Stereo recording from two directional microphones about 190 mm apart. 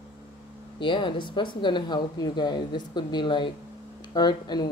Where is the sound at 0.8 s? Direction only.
25° left (ahead or behind).